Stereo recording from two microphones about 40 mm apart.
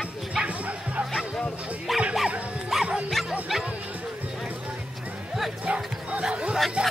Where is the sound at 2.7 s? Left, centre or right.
Centre.